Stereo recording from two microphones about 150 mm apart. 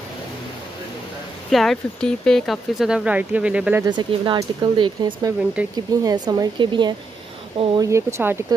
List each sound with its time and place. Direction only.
1.5 s speech: centre (ahead or behind)
3.8 s speech: 30° right (ahead or behind)
5.6 s speech: 10° right (ahead or behind)
6.0 s speech: 30° right (ahead or behind)
7.9 s speech: 15° right (ahead or behind)